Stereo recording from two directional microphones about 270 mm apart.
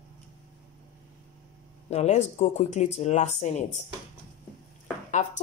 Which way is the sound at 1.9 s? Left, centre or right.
Left.